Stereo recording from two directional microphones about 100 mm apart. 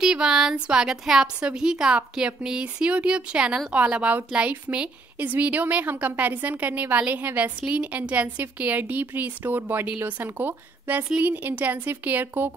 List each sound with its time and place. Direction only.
0.0 s a woman's voice: 5° right (ahead or behind)